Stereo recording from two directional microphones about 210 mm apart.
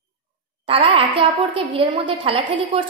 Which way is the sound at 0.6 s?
25° right (ahead or behind).